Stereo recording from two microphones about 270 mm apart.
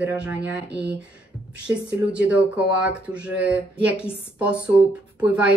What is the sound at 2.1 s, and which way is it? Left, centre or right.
A woman's voice, centre.